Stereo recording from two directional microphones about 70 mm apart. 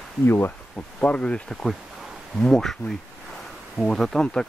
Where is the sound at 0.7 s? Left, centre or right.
Centre.